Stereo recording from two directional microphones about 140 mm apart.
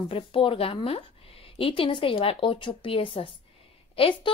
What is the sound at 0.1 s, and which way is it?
A woman's voice, 40° left (ahead or behind).